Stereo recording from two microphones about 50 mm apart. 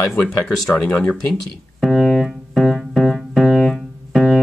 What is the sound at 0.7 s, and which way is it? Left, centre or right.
Speech, left.